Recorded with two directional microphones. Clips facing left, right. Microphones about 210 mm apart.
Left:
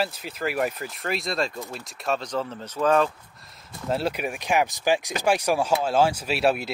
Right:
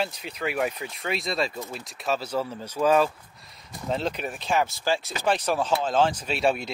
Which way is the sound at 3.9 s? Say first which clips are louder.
Left 2 dB; 10° left (ahead or behind).